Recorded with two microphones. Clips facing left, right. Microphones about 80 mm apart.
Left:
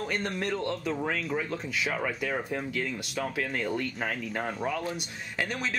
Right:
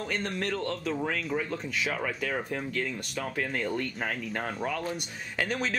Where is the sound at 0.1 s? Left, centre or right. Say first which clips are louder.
Right 1 dB; centre.